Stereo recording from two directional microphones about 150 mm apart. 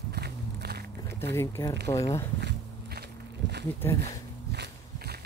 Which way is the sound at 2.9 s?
90° right.